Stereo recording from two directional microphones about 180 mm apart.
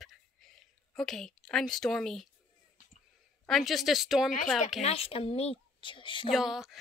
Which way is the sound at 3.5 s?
Centre (ahead or behind).